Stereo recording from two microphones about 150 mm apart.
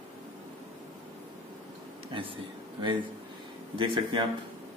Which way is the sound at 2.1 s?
35° right (ahead or behind).